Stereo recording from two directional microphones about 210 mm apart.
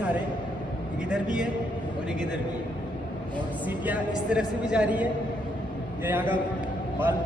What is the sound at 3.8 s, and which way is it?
Speech, 5° right (ahead or behind).